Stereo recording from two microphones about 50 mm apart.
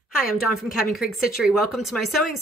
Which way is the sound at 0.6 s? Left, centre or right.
Centre.